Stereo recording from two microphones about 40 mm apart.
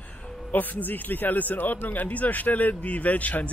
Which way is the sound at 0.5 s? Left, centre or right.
Left.